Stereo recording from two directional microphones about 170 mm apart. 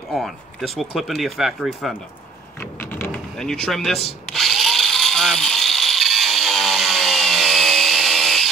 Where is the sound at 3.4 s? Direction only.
5° left (ahead or behind).